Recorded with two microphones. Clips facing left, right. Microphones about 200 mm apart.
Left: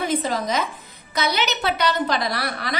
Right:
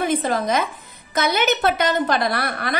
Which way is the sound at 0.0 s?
55° right (ahead or behind).